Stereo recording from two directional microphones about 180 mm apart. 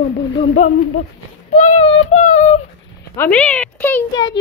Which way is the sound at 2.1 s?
40° left (ahead or behind).